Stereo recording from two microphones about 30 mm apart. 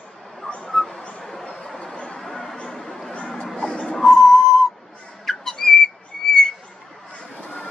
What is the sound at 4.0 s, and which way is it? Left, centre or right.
Whistle, centre.